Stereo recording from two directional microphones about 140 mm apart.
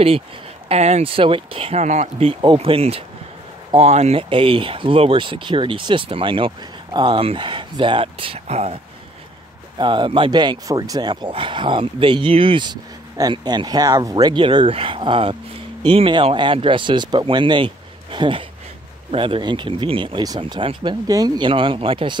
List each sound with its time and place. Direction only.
0.7 s speech: 50° right (ahead or behind)
9.8 s speech: 35° right (ahead or behind)
21.5 s speech: 40° right (ahead or behind)